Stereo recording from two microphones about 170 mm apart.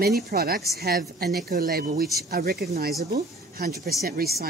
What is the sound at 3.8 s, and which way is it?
Speech, 65° right (ahead or behind).